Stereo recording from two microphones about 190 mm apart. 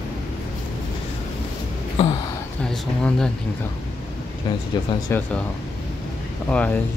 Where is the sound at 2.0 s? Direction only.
30° left (ahead or behind).